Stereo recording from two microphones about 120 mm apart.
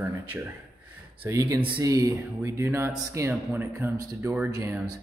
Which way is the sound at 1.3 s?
30° right (ahead or behind).